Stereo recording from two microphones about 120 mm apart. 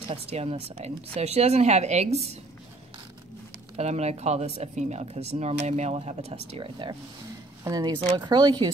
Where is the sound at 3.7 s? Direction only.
65° right (ahead or behind); by 7.0 s 45° right (ahead or behind).